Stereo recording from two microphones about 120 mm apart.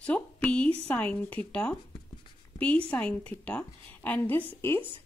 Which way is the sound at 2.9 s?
10° left (ahead or behind).